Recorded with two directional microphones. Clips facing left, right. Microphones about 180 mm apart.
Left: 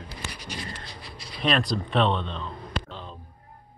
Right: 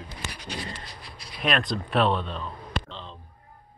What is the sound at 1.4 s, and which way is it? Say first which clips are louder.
Speech: left 2 dB; centre (ahead or behind).